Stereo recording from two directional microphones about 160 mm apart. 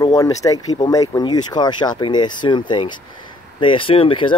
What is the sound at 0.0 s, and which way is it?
Speech, 20° left (ahead or behind).